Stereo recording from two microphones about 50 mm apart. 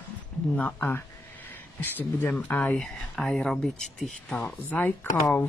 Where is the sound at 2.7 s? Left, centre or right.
Centre.